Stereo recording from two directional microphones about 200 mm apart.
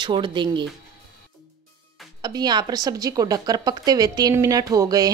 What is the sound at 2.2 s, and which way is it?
Speech, 20° right (ahead or behind).